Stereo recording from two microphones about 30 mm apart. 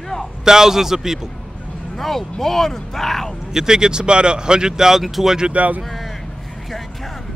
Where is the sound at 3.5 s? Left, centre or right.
Centre.